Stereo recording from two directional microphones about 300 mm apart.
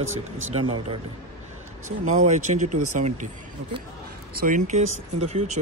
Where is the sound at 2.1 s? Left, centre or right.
Right.